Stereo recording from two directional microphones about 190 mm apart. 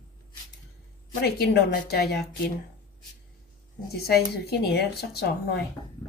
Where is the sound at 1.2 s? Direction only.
55° left (ahead or behind).